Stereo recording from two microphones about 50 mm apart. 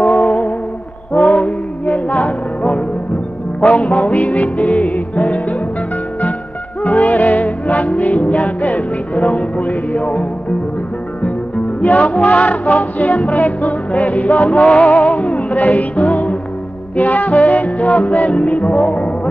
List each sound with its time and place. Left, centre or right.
0.0 s music: left
6.8 s music: left
11.2 s music: left